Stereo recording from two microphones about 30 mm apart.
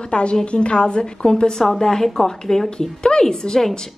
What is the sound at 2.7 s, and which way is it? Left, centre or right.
Speech, left.